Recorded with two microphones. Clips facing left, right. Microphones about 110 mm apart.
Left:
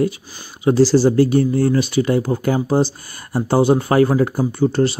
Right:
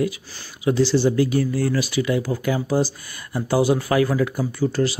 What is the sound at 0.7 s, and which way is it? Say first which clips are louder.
Speech: left 5 dB; 35° left (ahead or behind).